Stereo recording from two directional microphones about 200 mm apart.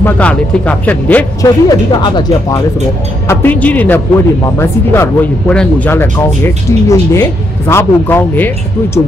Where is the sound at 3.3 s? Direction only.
10° left (ahead or behind).